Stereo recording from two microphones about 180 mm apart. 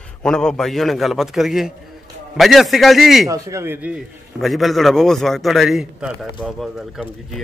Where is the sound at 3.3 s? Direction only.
15° right (ahead or behind).